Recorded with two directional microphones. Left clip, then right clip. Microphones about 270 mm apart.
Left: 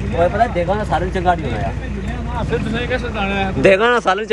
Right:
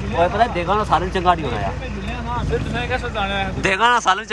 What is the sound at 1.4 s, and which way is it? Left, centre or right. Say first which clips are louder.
Speech: even; right.